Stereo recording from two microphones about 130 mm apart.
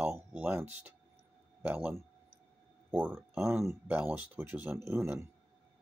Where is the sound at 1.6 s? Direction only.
15° right (ahead or behind).